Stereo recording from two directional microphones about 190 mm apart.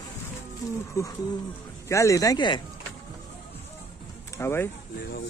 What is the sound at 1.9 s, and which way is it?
Speech, 15° left (ahead or behind).